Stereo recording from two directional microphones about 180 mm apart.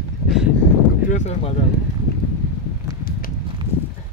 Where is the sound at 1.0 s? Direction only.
40° left (ahead or behind).